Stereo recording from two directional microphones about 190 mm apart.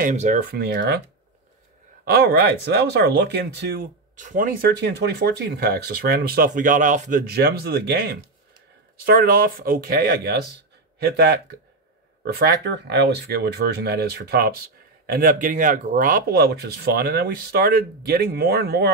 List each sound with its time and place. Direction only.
0.0 s speech: 40° right (ahead or behind)
0.5 s speech: 55° right (ahead or behind)
2.0 s speech: 55° right (ahead or behind)